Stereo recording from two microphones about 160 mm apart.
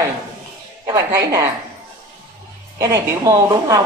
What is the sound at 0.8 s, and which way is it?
Speech, 20° right (ahead or behind).